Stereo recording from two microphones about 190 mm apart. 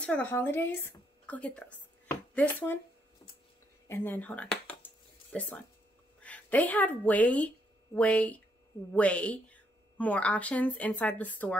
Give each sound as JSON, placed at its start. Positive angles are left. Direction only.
{"t": 0.0, "sound": "speech", "side_deg": 10}
{"t": 3.8, "sound": "a sound", "side_deg": 10}
{"t": 6.2, "sound": "a woman's voice", "side_deg": 10}